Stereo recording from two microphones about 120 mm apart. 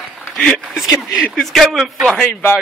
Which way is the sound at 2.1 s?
15° left (ahead or behind).